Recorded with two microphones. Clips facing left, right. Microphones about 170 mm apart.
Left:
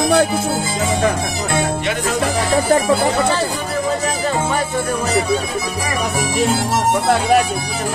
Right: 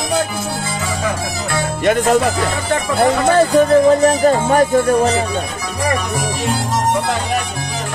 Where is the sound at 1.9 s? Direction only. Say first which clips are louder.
Right 7 dB; 50° right (ahead or behind).